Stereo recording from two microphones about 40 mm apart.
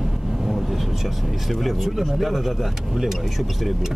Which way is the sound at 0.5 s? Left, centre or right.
Centre.